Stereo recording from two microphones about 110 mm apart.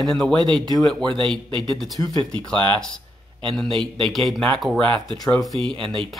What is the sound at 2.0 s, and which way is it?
Speech, 30° left (ahead or behind).